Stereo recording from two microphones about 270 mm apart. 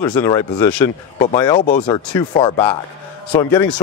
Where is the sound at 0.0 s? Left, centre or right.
Centre.